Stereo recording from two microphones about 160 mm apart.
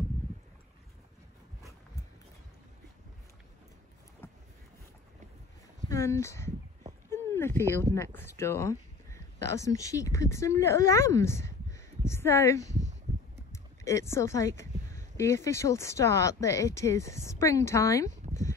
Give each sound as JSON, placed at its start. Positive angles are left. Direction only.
{"t": 5.9, "sound": "speech", "side_deg": 15}